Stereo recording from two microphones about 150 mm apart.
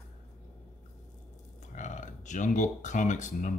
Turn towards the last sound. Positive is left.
turn(degrees=55)  # may be behind; listen again after turning